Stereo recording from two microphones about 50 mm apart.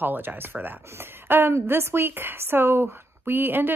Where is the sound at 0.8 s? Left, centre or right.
Right.